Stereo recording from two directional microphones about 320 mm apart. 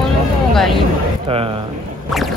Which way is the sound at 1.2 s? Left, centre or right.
Centre.